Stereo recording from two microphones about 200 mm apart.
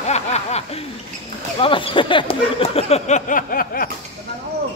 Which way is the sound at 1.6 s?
25° left (ahead or behind).